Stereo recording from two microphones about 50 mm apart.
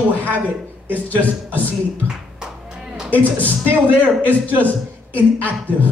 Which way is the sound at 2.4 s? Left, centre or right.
Centre.